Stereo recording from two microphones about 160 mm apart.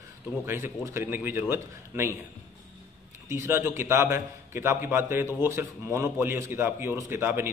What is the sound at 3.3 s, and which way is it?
A man's voice, 15° right (ahead or behind).